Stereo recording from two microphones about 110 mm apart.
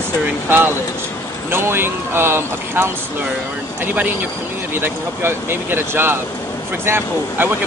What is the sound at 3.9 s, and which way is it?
Speech, 15° right (ahead or behind).